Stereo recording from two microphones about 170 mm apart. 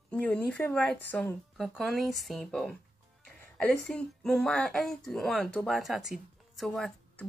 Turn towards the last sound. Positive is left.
turn(degrees=5)  # may be behind; listen again after turning